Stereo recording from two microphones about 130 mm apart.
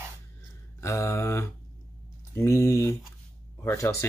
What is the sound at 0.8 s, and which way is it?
Speech, 20° left (ahead or behind).